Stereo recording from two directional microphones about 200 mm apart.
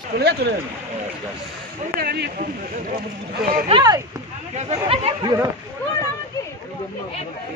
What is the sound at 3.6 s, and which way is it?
Speech, 20° right (ahead or behind).